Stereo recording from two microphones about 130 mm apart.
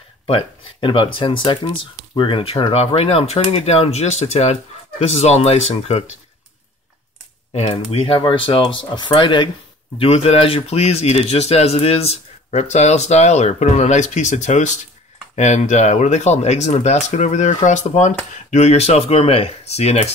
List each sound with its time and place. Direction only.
0.3 s speech: 40° left (ahead or behind)
7.5 s speech: 45° left (ahead or behind)
9.9 s speech: 50° left (ahead or behind)